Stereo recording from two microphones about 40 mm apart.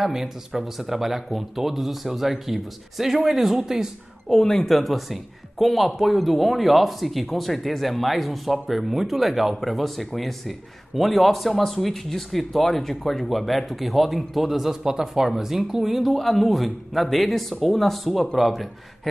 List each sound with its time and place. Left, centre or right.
0.0 s speech: centre
4.4 s speech: centre
4.6 s speech: centre